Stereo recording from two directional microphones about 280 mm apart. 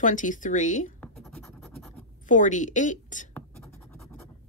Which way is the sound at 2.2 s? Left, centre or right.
Left.